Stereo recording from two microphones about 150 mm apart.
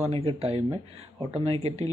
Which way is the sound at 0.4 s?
40° right (ahead or behind).